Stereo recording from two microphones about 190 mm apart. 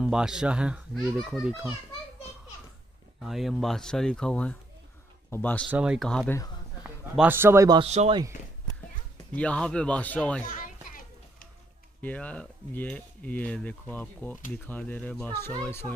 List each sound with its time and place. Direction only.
0.0 s a child's voice: 5° right (ahead or behind)
3.2 s a child's voice: centre (ahead or behind)
5.7 s a child's voice: 5° right (ahead or behind)
6.8 s a man's voice: 10° right (ahead or behind)
7.8 s speech: 35° right (ahead or behind)
9.3 s speech: 5° left (ahead or behind)
10.4 s children playing: 45° left (ahead or behind)
12.0 s speech: 10° left (ahead or behind)